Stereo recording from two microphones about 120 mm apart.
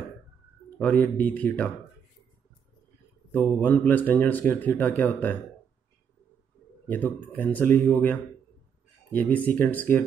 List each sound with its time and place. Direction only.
0.7 s speech: 10° left (ahead or behind)
3.3 s speech: 15° left (ahead or behind)
6.9 s speech: 15° left (ahead or behind)